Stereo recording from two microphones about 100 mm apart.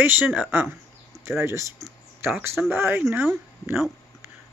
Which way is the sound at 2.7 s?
20° right (ahead or behind).